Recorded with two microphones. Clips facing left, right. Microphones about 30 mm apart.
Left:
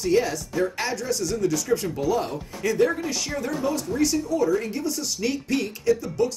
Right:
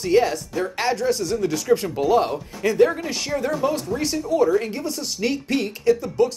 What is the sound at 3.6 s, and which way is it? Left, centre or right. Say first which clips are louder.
Speech: right 1 dB; right.